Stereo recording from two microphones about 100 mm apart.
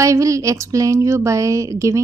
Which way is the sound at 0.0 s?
30° right (ahead or behind).